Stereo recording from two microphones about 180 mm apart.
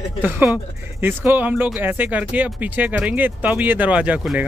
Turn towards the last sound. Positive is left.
turn(degrees=-5)  # may be behind; listen again after turning